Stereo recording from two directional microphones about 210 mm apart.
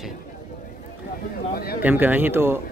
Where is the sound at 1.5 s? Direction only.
45° left (ahead or behind).